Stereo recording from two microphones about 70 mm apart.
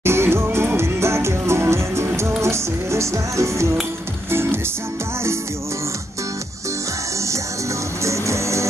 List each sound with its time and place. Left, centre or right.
0.0 s music: right
8.0 s music: right